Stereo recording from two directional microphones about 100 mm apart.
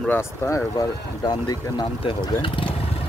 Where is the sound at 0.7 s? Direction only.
40° left (ahead or behind).